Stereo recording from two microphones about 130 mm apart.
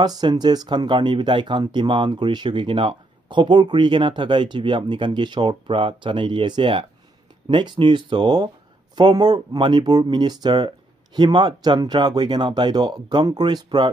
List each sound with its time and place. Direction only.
0.0 s speech: 30° right (ahead or behind)